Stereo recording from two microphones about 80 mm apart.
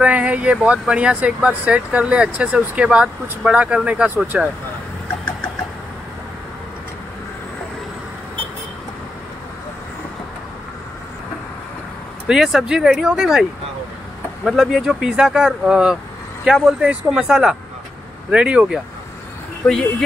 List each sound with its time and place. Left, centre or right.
0.0 s speech: centre
12.3 s speech: centre
19.6 s speech: centre